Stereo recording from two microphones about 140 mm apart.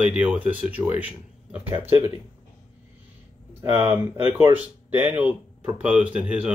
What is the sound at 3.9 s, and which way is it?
Speech, 15° right (ahead or behind).